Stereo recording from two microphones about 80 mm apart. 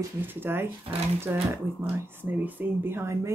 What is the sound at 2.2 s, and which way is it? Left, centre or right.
Speech, right.